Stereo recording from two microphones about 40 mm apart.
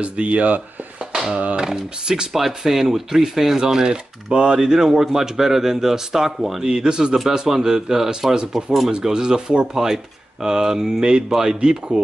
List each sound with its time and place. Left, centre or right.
0.0 s speech: right
1.1 s a sound: centre
1.6 s speech: centre
6.6 s speech: right
8.4 s speech: right